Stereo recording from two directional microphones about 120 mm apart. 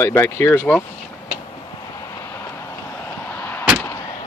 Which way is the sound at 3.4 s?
15° left (ahead or behind).